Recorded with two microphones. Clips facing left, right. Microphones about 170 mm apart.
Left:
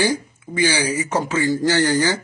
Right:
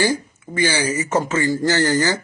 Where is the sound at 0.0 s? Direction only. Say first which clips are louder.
Even; 15° left (ahead or behind).